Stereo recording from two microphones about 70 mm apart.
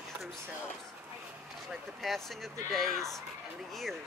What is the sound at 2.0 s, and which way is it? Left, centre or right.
Speech, centre.